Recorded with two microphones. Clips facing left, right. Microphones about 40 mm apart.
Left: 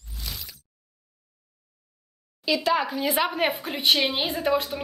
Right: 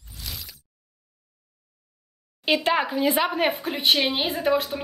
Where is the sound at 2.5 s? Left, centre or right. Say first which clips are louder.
Right 2 dB; right.